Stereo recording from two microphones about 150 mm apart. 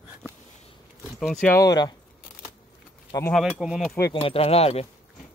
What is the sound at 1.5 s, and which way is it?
Speech, 25° left (ahead or behind).